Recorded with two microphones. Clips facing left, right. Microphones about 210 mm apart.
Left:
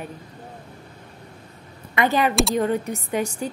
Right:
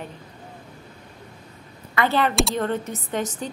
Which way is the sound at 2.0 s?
15° left (ahead or behind).